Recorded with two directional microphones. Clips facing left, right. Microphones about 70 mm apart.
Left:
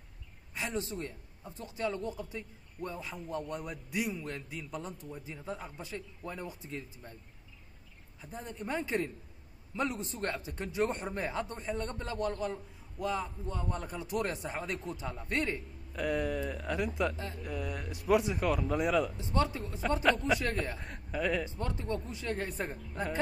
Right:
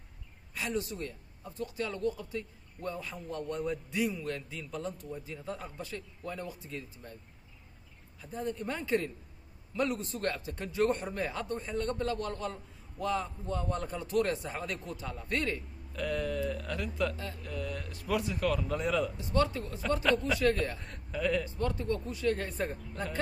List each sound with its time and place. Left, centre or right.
0.6 s speech: left
8.2 s speech: left
13.0 s a man's voice: centre
19.1 s speech: left
21.5 s speech: left